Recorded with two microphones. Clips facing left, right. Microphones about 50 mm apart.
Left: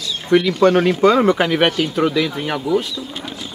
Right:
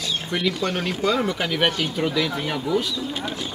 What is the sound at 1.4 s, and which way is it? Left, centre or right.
Speech, left.